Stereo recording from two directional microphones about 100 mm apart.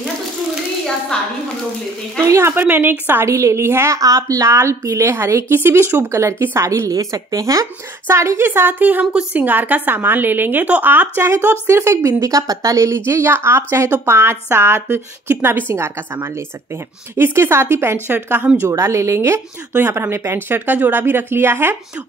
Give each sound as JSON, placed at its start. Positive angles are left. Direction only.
{"t": 2.2, "sound": "a woman's voice", "side_deg": -25}
{"t": 18.7, "sound": "a woman's voice", "side_deg": -30}